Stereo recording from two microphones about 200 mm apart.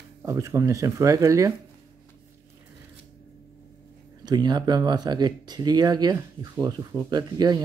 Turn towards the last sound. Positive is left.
turn(degrees=-20)  # may be behind; listen again after turning